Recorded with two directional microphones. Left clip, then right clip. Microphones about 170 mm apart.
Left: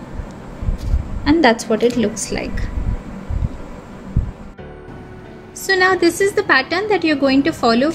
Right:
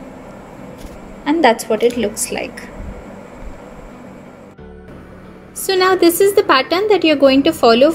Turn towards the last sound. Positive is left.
turn(degrees=-25)  # may be behind; listen again after turning